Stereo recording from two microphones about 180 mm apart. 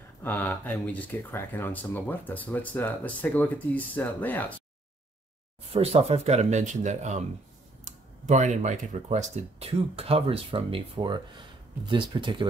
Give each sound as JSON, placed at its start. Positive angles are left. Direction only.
{"t": 0.2, "sound": "speech", "side_deg": 10}
{"t": 5.7, "sound": "speech", "side_deg": -35}